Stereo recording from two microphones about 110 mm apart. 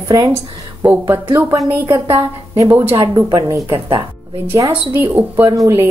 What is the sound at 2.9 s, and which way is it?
A woman's voice, 35° right (ahead or behind).